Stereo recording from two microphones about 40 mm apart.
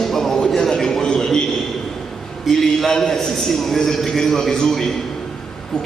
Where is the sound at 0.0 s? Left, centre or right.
Centre.